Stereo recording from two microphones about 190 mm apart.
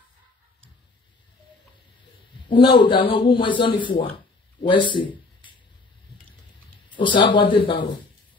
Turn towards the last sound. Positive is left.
turn(degrees=25)  # may be behind; listen again after turning